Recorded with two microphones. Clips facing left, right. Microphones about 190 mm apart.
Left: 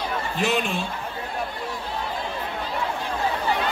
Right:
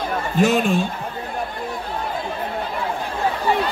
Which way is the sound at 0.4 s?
45° right (ahead or behind).